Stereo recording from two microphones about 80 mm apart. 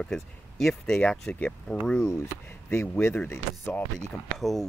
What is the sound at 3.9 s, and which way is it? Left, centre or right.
Speech, centre.